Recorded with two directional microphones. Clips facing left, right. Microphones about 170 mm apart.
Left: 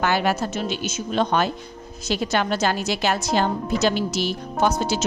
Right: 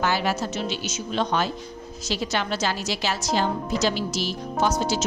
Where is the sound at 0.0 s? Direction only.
55° left (ahead or behind).